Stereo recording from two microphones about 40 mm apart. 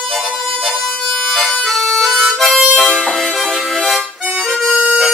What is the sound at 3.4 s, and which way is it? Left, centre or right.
Harmonica, centre.